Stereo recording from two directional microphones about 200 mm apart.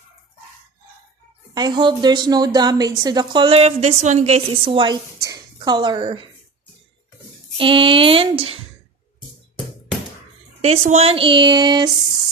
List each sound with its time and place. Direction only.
1.5 s a woman's voice: 20° right (ahead or behind)
7.5 s a woman's voice: 25° right (ahead or behind)
10.6 s a woman's voice: 35° right (ahead or behind)